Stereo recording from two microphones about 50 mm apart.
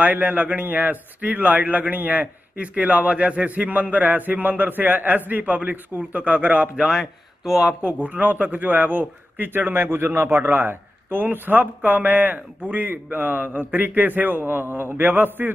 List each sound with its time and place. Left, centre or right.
0.0 s a man's voice: right
6.9 s speech: centre
7.8 s a man's voice: right